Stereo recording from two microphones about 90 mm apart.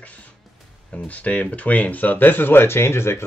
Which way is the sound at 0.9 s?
15° left (ahead or behind).